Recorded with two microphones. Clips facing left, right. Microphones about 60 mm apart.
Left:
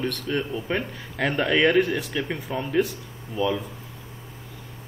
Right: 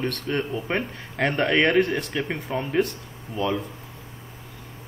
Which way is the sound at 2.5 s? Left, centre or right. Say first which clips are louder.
Even; right.